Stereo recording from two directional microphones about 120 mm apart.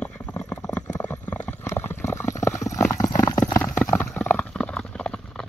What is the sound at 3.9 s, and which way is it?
Clip-clop, 10° left (ahead or behind).